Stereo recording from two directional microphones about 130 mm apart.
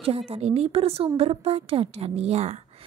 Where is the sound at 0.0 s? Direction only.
45° right (ahead or behind).